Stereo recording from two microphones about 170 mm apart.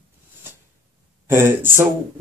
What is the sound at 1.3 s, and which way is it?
Speech, 15° right (ahead or behind).